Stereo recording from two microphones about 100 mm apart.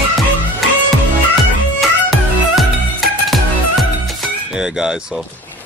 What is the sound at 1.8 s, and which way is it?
Music, centre (ahead or behind).